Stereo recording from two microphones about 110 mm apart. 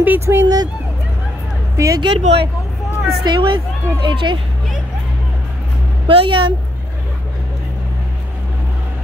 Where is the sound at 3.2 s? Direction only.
45° right (ahead or behind).